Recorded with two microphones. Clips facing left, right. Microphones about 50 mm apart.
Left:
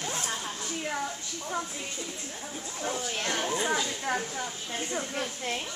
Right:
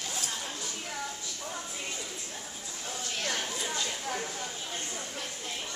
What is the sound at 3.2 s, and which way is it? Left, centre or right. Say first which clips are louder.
Chatter: left 1 dB; left.